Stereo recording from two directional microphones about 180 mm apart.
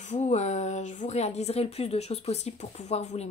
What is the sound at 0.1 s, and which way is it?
Speech, 40° left (ahead or behind).